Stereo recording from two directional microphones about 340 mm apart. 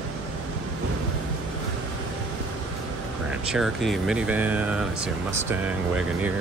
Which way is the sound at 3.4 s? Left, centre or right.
Centre.